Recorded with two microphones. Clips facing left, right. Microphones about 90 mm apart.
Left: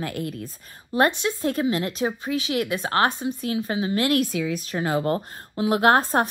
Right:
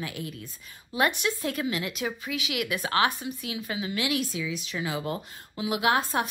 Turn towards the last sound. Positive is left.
turn(degrees=50)  # may be behind; listen again after turning